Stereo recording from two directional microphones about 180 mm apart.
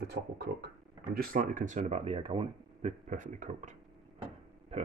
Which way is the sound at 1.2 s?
50° right (ahead or behind).